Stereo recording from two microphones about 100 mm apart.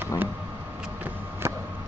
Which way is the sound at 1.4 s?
25° right (ahead or behind).